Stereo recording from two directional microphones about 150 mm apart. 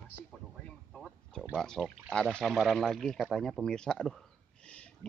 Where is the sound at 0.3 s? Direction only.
5° left (ahead or behind).